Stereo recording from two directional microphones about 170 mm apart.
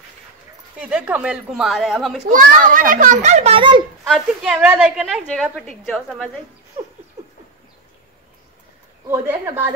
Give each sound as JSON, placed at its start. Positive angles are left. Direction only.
{"t": 0.7, "sound": "a woman's voice", "side_deg": -5}
{"t": 2.2, "sound": "a child's voice", "side_deg": -50}
{"t": 3.5, "sound": "speech", "side_deg": -30}
{"t": 4.1, "sound": "a woman's voice", "side_deg": -5}